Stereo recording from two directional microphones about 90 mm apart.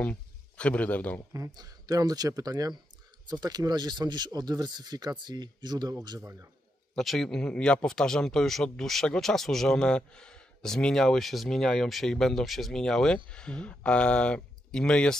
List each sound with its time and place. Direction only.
0.0 s speech: 15° left (ahead or behind)
1.3 s speech: 45° right (ahead or behind)
7.0 s speech: 5° left (ahead or behind)